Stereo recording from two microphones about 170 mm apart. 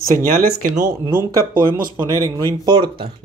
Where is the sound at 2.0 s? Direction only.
20° right (ahead or behind).